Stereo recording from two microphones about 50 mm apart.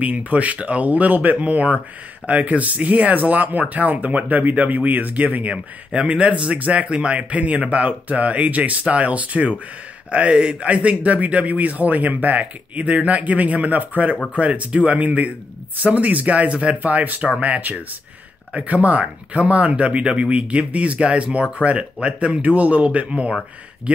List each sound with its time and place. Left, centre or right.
0.0 s speech: right